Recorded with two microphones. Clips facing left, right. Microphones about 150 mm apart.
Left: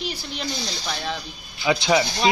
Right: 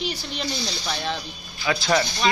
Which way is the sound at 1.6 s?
20° left (ahead or behind).